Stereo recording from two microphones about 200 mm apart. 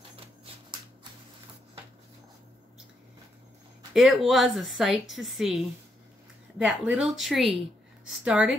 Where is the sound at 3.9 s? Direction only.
Centre (ahead or behind).